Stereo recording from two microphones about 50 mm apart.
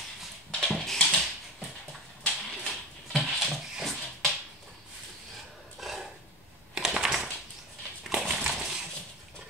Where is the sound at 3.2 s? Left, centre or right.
Centre.